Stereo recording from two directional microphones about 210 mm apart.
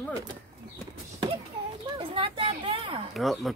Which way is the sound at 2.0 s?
25° right (ahead or behind).